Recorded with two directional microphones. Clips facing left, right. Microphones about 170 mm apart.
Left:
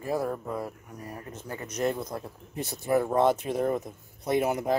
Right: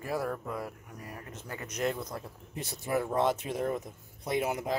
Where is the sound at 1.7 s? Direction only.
35° left (ahead or behind).